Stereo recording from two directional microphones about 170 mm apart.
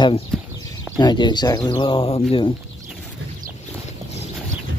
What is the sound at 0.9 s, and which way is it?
Speech, 25° left (ahead or behind).